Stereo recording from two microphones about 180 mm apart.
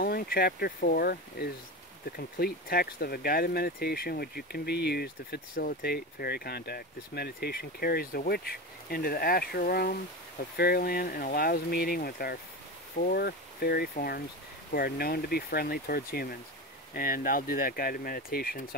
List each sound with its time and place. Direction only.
0.0 s speech: 55° left (ahead or behind)